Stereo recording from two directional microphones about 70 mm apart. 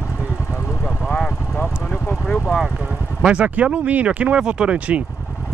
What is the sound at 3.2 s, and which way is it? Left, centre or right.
Speech, centre.